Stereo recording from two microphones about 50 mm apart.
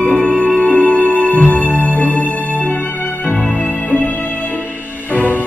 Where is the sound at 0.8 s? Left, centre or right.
Left.